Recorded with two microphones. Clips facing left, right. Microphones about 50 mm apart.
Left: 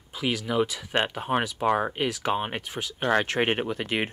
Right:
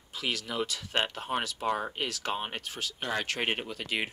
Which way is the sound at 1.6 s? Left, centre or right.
Left.